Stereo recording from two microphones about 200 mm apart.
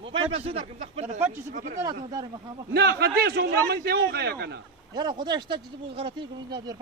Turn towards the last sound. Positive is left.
turn(degrees=-20)  # may be behind; listen again after turning